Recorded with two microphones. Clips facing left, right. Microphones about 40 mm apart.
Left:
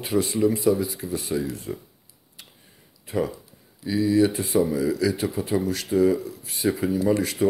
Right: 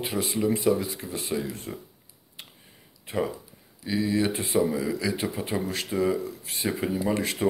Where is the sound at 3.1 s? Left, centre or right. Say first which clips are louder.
Left 3 dB; right.